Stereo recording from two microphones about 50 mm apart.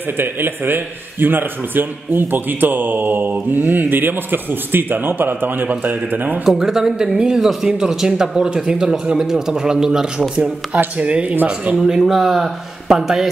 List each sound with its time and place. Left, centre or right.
0.2 s a man's voice: right
6.4 s speech: centre; by 11.3 s right
11.7 s speech: centre